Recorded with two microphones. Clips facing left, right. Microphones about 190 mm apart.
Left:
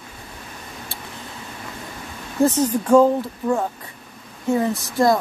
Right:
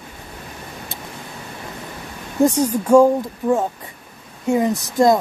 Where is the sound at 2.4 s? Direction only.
10° right (ahead or behind).